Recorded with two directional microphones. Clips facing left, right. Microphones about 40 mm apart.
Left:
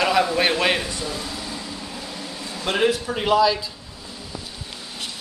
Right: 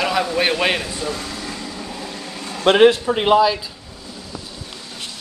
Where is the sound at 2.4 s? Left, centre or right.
Right.